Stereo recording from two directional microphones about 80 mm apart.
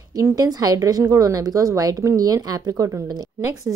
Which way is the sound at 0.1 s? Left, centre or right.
Right.